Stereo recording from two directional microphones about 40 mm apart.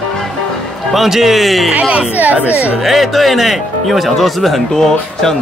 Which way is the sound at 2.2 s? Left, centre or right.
Right.